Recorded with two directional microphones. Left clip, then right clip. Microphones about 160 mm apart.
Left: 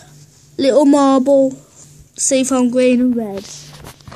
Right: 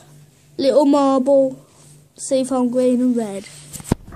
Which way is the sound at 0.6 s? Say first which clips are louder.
Left 3 dB; 20° left (ahead or behind).